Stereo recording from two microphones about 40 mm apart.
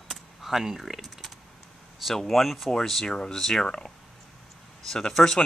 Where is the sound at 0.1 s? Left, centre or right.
Centre.